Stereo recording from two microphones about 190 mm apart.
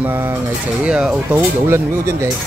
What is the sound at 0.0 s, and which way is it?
Speech, 10° right (ahead or behind).